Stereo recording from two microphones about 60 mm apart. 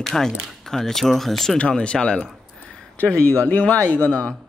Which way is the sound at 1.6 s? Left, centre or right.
Centre.